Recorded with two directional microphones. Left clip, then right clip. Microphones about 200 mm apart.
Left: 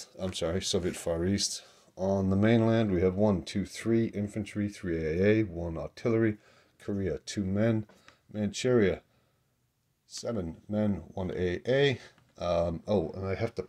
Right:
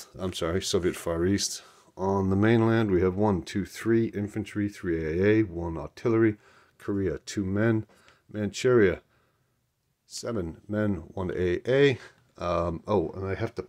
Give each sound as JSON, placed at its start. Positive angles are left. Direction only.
{"t": 0.0, "sound": "speech", "side_deg": -20}
{"t": 10.0, "sound": "speech", "side_deg": -25}